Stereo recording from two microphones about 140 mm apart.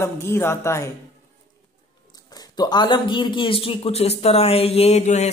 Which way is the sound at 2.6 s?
30° left (ahead or behind).